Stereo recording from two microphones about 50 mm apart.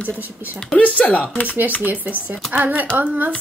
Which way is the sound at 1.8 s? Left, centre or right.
Right.